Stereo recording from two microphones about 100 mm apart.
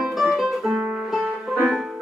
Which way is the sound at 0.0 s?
Centre (ahead or behind).